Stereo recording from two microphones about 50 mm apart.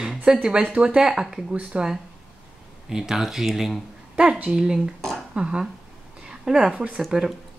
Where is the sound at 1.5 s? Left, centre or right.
Right.